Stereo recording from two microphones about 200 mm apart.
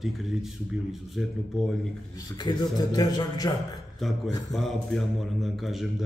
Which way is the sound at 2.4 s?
20° left (ahead or behind).